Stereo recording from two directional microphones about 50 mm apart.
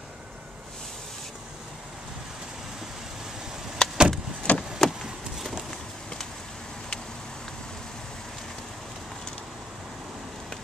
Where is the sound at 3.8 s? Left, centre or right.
Centre.